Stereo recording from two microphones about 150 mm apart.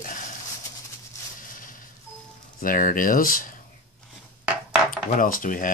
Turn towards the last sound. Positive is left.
turn(degrees=65)  # may be behind; listen again after turning